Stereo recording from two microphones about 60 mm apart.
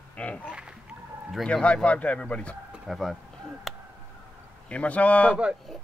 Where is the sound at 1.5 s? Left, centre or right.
Left.